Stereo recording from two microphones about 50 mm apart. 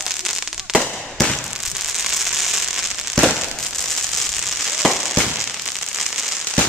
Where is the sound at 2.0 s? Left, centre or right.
Centre.